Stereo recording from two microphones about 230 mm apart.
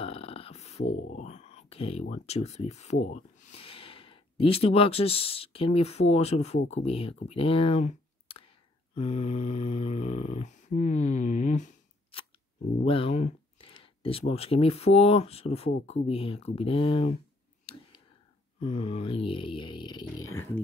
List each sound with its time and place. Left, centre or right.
0.0 s a sound: left
1.1 s speech: left
8.9 s snoring: left
12.8 s speech: left
17.7 s clicking: left
18.6 s speech: left